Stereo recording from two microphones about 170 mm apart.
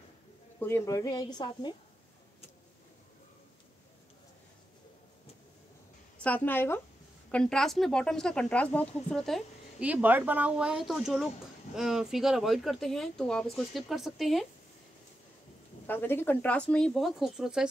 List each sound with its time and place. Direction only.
0.6 s a woman's voice: 15° left (ahead or behind)
6.2 s speech: 10° left (ahead or behind)
15.9 s speech: 10° left (ahead or behind); by 17.6 s 5° right (ahead or behind)